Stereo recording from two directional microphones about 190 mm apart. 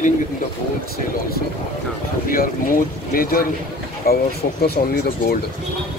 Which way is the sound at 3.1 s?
50° left (ahead or behind).